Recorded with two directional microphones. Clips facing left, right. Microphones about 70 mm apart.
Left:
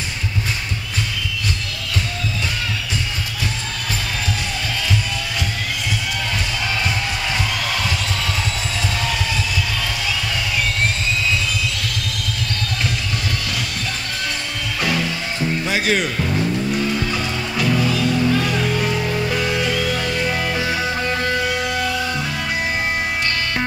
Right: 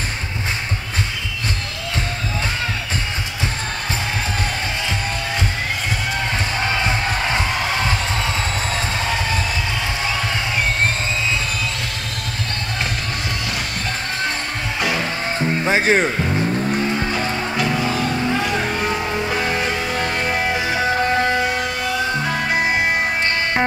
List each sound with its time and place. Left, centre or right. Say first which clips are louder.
7.2 s music: right 2 dB; right
15.6 s speech: right 5 dB; right